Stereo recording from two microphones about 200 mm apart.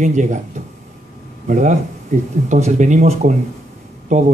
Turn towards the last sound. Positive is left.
turn(degrees=-35)  # may be behind; listen again after turning